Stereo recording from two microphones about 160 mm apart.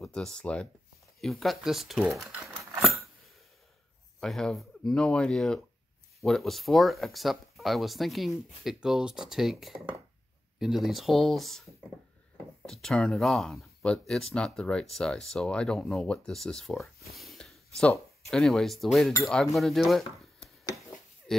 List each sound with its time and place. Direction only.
0.0 s speech: 5° left (ahead or behind)
4.2 s speech: 5° left (ahead or behind)
12.6 s speech: 5° left (ahead or behind)
17.2 s a sound: centre (ahead or behind)
18.3 s speech: 5° left (ahead or behind)
21.3 s oink: 5° left (ahead or behind)